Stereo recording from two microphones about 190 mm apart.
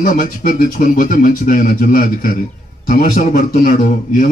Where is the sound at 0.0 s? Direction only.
45° left (ahead or behind).